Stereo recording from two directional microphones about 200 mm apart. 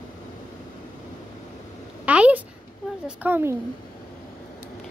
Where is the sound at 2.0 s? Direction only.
5° right (ahead or behind).